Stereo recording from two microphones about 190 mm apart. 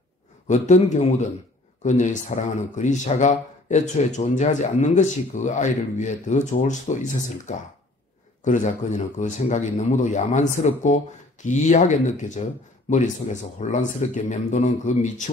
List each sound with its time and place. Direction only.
0.5 s a man's voice: 40° left (ahead or behind)